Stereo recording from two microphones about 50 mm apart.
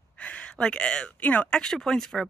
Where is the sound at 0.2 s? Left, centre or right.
Left.